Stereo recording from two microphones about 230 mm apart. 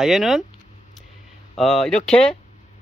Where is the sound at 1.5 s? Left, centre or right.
Centre.